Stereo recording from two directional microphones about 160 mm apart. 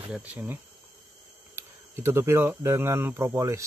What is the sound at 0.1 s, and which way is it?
Speech, 10° right (ahead or behind).